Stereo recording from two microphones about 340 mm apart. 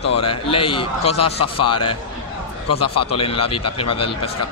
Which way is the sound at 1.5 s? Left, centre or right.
Left.